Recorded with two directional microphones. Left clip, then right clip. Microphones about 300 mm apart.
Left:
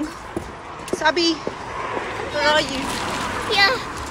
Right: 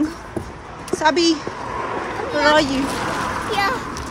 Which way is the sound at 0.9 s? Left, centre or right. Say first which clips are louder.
Right 2 dB; centre.